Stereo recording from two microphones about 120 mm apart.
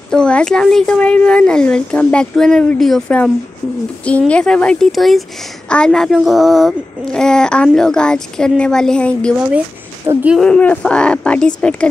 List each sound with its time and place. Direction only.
0.1 s speech: 5° left (ahead or behind)
4.3 s a child's voice: 10° left (ahead or behind)
10.1 s speech: 25° right (ahead or behind)
10.4 s speech: 10° left (ahead or behind)